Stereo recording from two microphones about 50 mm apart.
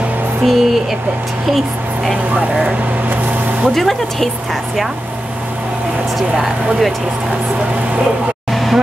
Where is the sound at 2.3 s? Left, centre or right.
Right.